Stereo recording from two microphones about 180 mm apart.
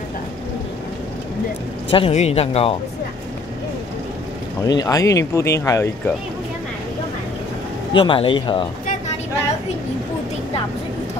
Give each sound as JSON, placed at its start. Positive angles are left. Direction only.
{"t": 1.9, "sound": "speech", "side_deg": 30}
{"t": 4.6, "sound": "speech", "side_deg": 20}
{"t": 7.9, "sound": "a man's voice", "side_deg": 30}